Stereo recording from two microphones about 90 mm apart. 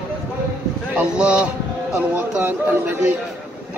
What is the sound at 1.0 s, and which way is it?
A man's voice, 15° right (ahead or behind).